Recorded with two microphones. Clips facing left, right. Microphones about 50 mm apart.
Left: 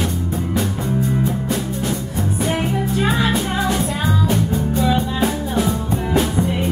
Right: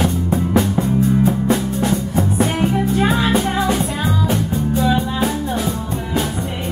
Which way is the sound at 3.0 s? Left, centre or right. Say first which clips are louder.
Right 1 dB; right.